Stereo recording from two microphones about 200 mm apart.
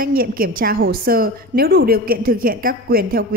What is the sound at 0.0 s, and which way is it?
A woman's voice, 45° right (ahead or behind).